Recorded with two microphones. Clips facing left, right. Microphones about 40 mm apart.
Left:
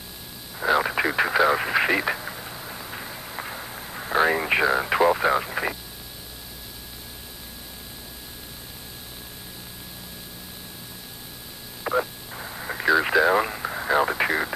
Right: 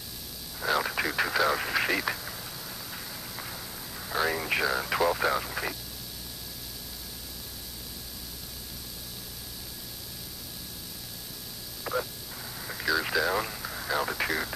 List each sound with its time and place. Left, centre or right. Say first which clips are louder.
0.6 s radio: left 6 dB; left
11.8 s radio: left 7 dB; left